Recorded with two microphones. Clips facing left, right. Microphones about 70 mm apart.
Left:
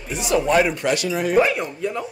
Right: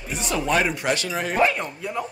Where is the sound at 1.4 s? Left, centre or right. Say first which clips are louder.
Left 1 dB; centre.